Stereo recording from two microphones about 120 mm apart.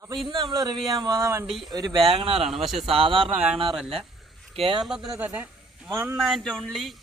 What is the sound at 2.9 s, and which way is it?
Speech, 50° right (ahead or behind).